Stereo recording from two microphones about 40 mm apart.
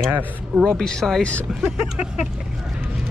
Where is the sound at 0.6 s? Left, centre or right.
Centre.